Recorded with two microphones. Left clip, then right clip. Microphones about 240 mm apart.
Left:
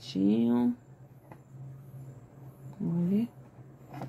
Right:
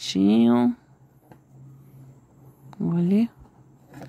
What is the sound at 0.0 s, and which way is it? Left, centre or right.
Speech, right.